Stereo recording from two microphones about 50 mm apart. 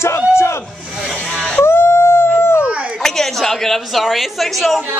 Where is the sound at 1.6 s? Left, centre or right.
Left.